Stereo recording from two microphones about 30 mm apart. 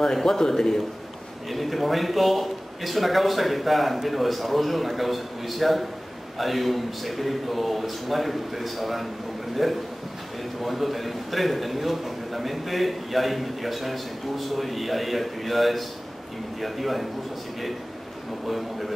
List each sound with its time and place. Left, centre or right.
0.0 s a man's voice: centre
1.5 s a man's voice: centre
18.5 s a man's voice: centre